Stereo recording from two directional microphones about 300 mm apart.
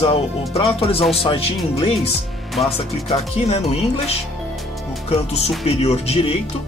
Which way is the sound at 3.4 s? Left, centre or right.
Left.